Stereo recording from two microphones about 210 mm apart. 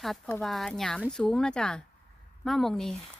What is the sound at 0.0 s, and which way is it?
A woman's voice, centre (ahead or behind).